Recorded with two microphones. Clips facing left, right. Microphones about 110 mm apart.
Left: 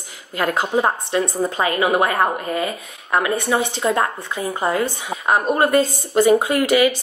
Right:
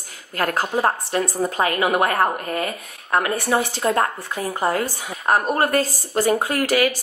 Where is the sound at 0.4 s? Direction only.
20° left (ahead or behind).